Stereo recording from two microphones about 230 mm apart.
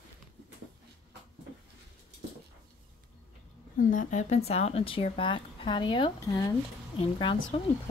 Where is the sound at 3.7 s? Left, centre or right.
Left.